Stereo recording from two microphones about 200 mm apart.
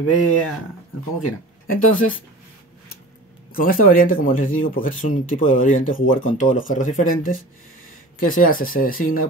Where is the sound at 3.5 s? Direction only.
45° left (ahead or behind).